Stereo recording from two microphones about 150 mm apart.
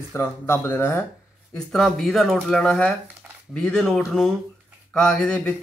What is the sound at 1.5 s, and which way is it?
Speech, 5° left (ahead or behind).